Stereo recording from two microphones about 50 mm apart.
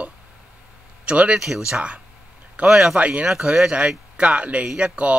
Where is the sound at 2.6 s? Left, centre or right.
Centre.